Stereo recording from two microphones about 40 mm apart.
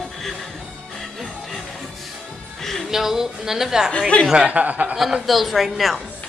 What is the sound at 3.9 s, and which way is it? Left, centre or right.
Speech, centre.